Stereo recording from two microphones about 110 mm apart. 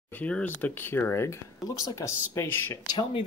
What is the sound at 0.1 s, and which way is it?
Speech, 10° left (ahead or behind).